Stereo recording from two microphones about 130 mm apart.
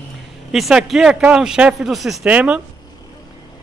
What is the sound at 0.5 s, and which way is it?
A man's voice, 5° right (ahead or behind).